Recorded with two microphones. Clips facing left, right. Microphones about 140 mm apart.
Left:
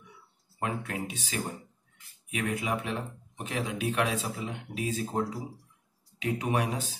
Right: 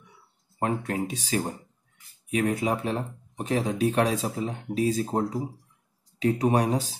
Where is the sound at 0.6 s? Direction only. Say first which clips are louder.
Right 6 dB; 40° right (ahead or behind).